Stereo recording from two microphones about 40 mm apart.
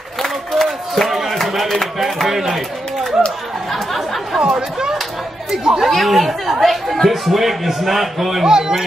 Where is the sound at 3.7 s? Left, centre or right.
Centre.